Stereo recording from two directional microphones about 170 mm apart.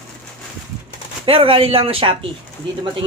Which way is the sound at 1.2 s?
30° right (ahead or behind).